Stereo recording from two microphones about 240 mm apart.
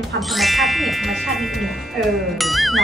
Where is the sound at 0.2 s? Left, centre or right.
Centre.